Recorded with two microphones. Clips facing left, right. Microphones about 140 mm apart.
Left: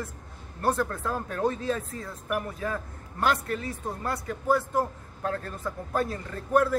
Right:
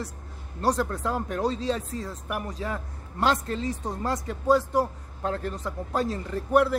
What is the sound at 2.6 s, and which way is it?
Speech, 25° right (ahead or behind).